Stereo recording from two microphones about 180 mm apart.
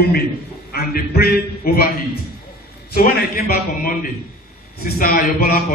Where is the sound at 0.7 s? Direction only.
55° left (ahead or behind).